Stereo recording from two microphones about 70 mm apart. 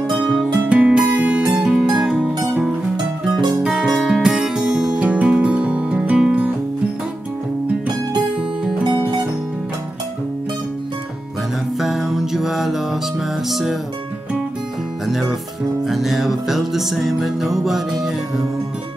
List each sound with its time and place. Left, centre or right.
0.1 s music: centre
3.3 s music: right
3.6 s music: centre
11.8 s music: centre
15.9 s music: centre